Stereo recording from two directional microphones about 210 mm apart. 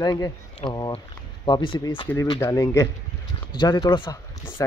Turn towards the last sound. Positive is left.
turn(degrees=15)  # may be behind; listen again after turning